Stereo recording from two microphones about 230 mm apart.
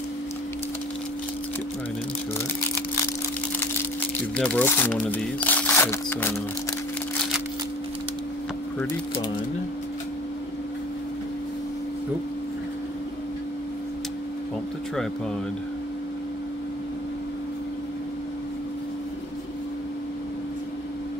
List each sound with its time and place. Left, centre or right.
4.4 s speech: centre